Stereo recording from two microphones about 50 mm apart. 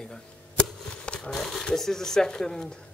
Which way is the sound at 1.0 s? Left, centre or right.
Left.